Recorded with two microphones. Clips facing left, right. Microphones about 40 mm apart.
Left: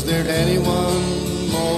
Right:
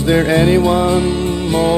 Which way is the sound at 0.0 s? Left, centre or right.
Right.